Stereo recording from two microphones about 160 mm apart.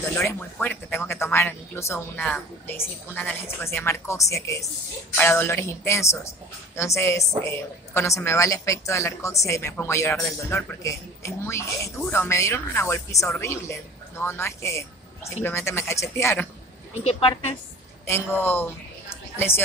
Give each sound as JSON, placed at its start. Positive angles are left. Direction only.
{"t": 0.3, "sound": "a woman's voice", "side_deg": 10}
{"t": 17.0, "sound": "a woman's voice", "side_deg": 40}
{"t": 18.0, "sound": "a woman's voice", "side_deg": 15}